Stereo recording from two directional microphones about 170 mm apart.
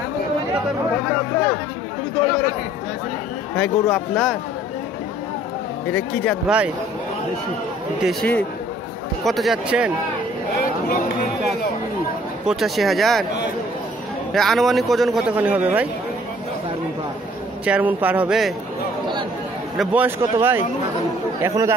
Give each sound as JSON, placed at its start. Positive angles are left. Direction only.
{"t": 3.5, "sound": "a man's voice", "side_deg": 5}
{"t": 5.9, "sound": "speech", "side_deg": 10}
{"t": 6.4, "sound": "speech", "side_deg": -5}
{"t": 8.0, "sound": "a man's voice", "side_deg": 0}
{"t": 12.4, "sound": "a man's voice", "side_deg": 0}
{"t": 14.3, "sound": "a man's voice", "side_deg": 0}
{"t": 17.6, "sound": "speech", "side_deg": -10}
{"t": 19.8, "sound": "speech", "side_deg": -10}